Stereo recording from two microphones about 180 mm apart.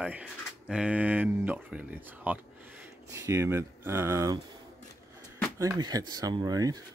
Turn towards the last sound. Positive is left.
turn(degrees=-20)  # may be behind; listen again after turning